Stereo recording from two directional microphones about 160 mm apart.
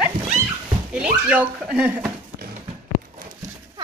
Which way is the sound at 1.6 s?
5° right (ahead or behind).